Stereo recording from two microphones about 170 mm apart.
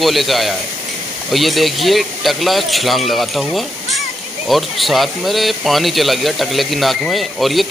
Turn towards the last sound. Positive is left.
turn(degrees=0)  # may be behind; listen again after turning